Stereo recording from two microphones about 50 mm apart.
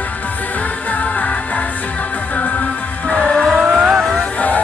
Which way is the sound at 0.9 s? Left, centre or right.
Left.